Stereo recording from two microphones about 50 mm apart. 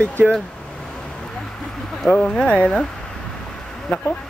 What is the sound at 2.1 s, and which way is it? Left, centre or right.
Speech, left.